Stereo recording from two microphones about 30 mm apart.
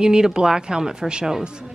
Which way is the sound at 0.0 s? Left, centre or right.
Right.